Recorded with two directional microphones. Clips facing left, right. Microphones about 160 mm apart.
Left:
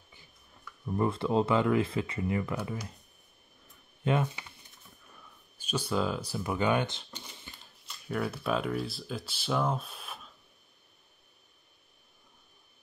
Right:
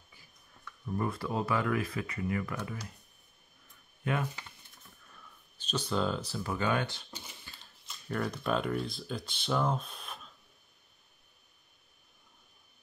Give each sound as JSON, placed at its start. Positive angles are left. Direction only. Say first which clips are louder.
{"t": 0.8, "sound": "speech", "louder": "left 5 dB", "side_deg": 25}
{"t": 4.0, "sound": "speech", "louder": "left 4 dB", "side_deg": 25}
{"t": 5.0, "sound": "speech", "louder": "left 1 dB", "side_deg": 10}
{"t": 7.5, "sound": "a sound", "louder": "left 3 dB", "side_deg": 20}
{"t": 7.9, "sound": "speech", "louder": "left 1 dB", "side_deg": 5}